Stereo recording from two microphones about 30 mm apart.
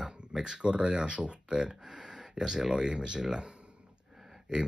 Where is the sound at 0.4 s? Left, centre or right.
Right.